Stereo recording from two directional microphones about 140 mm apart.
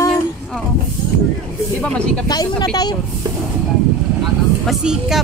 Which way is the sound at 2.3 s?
30° left (ahead or behind).